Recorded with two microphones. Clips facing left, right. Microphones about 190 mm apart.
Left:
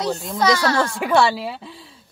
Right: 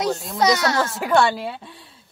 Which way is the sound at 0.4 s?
20° right (ahead or behind).